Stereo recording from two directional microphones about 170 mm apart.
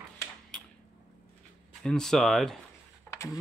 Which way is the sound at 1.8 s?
5° left (ahead or behind).